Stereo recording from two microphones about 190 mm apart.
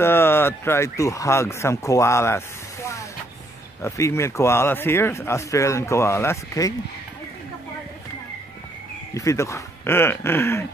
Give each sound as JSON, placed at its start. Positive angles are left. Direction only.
{"t": 0.0, "sound": "a man's voice", "side_deg": 10}
{"t": 9.1, "sound": "a man's voice", "side_deg": 15}